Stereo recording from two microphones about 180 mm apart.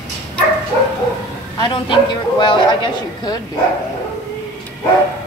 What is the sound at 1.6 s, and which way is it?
Speech, 25° left (ahead or behind).